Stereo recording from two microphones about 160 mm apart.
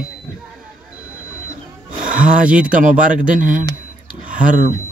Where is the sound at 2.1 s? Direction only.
55° right (ahead or behind).